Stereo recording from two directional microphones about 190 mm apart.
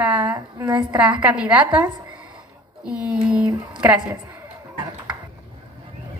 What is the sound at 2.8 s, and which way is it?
A woman's voice, 5° right (ahead or behind).